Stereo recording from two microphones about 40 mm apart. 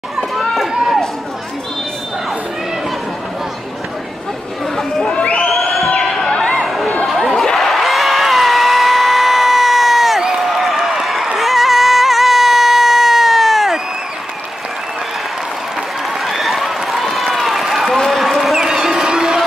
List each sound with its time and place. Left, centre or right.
0.7 s run: centre
5.0 s crowd: left
5.5 s crowd: centre
6.3 s a sound: centre
16.3 s a sound: centre
18.6 s crowd: centre